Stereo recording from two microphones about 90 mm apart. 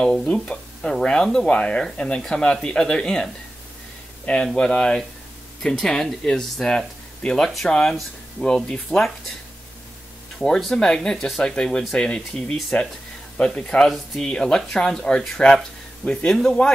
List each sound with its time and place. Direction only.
0.0 s speech: 10° left (ahead or behind)
4.6 s speech: 10° left (ahead or behind)
10.4 s speech: 5° left (ahead or behind)